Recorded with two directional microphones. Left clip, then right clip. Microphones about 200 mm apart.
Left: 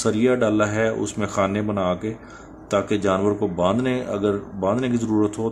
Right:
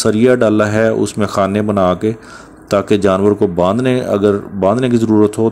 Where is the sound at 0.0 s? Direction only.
30° right (ahead or behind).